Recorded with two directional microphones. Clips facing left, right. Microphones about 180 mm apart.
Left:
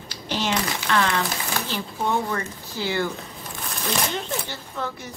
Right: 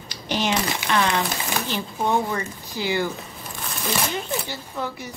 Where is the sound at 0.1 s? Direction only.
15° right (ahead or behind).